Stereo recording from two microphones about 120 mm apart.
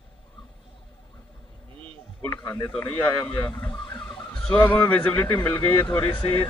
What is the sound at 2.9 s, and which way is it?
Speech, 40° left (ahead or behind).